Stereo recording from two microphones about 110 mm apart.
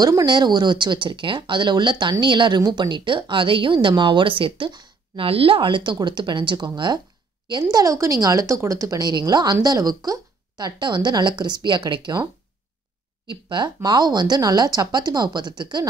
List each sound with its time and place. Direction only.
0.0 s speech: 35° right (ahead or behind)
5.2 s speech: 55° right (ahead or behind)
7.7 s a woman's voice: 30° right (ahead or behind)
13.3 s a woman's voice: 45° right (ahead or behind)